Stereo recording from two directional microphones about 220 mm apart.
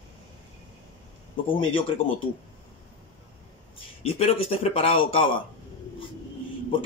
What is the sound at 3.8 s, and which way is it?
Speech, 25° left (ahead or behind).